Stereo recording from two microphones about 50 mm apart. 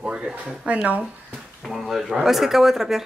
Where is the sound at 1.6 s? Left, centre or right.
Centre.